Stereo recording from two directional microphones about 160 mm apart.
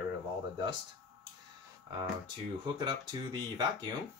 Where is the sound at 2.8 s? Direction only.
25° right (ahead or behind).